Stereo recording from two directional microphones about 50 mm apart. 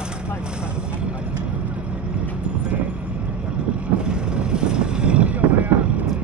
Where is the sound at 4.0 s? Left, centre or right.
Centre.